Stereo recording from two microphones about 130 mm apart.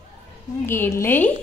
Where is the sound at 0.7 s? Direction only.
20° left (ahead or behind).